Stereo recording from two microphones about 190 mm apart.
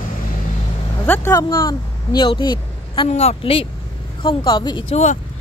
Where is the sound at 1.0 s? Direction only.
10° left (ahead or behind).